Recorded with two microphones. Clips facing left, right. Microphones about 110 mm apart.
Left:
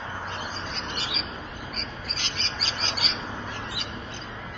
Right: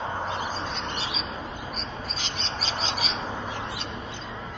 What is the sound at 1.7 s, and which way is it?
Frog, centre (ahead or behind).